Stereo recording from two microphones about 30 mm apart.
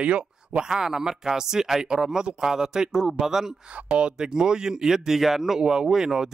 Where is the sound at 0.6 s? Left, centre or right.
Right.